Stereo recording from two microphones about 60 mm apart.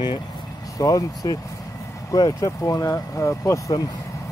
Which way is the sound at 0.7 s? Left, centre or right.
Left.